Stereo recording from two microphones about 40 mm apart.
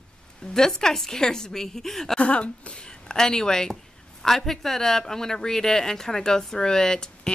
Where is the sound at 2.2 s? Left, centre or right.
Left.